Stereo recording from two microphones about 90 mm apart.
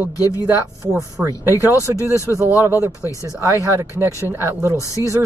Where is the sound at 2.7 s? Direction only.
25° right (ahead or behind).